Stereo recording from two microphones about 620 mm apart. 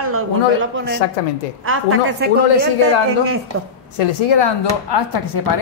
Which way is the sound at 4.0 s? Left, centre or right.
Left.